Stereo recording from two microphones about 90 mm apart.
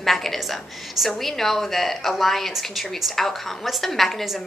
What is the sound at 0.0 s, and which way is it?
A woman's voice, centre (ahead or behind).